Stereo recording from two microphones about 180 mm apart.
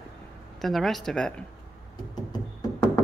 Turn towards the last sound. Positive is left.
turn(degrees=20)  # may be behind; listen again after turning